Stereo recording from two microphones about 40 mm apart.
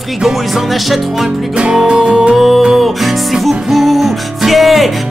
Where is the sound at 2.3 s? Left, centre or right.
Centre.